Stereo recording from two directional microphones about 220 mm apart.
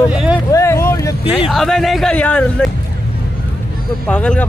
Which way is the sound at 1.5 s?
Centre (ahead or behind).